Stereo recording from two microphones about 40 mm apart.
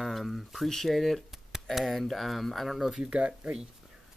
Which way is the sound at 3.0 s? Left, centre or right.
Right.